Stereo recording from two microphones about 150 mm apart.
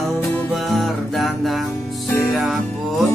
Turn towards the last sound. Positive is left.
turn(degrees=0)  # may be behind; listen again after turning